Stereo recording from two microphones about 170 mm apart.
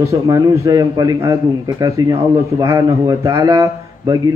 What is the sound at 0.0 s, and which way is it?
A man's voice, 20° right (ahead or behind).